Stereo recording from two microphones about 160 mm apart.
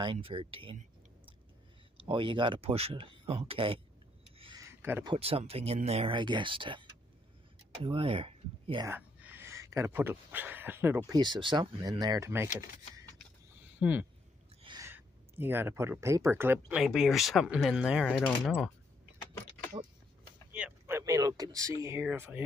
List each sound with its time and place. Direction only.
0.0 s speech: 35° right (ahead or behind)
2.0 s speech: 30° right (ahead or behind)
4.6 s a sound: 15° right (ahead or behind)
5.0 s speech: 35° right (ahead or behind)
8.8 s speech: 10° right (ahead or behind)
11.1 s speech: 30° right (ahead or behind)
13.7 s speech: 10° right (ahead or behind)
16.8 s speech: centre (ahead or behind)
19.8 s speech: 30° right (ahead or behind)
20.5 s a sound: 10° right (ahead or behind)
21.8 s speech: 15° right (ahead or behind)